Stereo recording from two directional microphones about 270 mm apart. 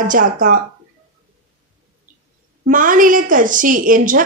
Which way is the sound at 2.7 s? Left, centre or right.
Right.